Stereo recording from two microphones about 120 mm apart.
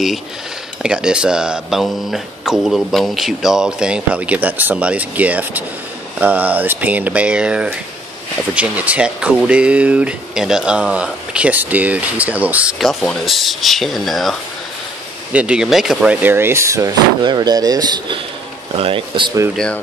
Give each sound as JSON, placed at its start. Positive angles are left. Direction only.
{"t": 0.8, "sound": "speech", "side_deg": -5}
{"t": 12.7, "sound": "speech", "side_deg": 0}
{"t": 15.3, "sound": "speech", "side_deg": -10}
{"t": 18.8, "sound": "speech", "side_deg": -50}
{"t": 19.5, "sound": "speech", "side_deg": 5}